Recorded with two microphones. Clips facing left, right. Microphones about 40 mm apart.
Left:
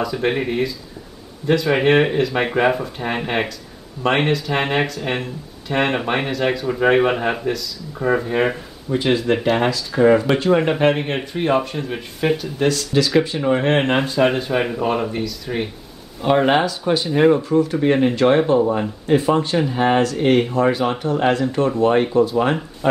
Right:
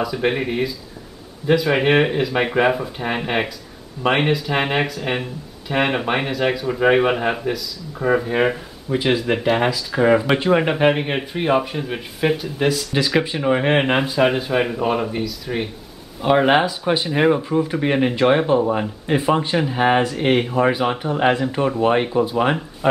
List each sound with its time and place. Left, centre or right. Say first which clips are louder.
0.0 s speech: even; centre